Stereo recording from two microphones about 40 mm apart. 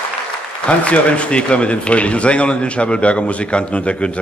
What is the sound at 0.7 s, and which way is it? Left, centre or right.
A man's voice, left.